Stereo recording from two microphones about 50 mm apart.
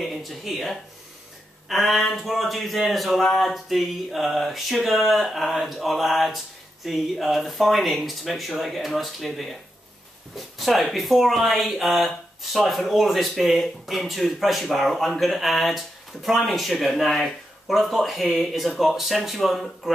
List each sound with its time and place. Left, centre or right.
0.0 s speech: centre